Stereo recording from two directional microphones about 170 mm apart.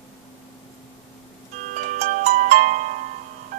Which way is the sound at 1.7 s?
45° right (ahead or behind).